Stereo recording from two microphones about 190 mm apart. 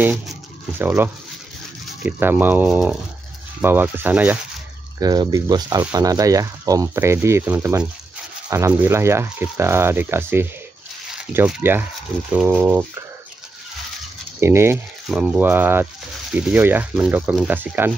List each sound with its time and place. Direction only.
0.0 s speech: 10° right (ahead or behind)
4.9 s speech: 20° right (ahead or behind)
14.4 s speech: 15° right (ahead or behind)